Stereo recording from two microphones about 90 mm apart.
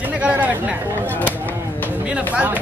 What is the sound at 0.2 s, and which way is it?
Speech, 15° right (ahead or behind).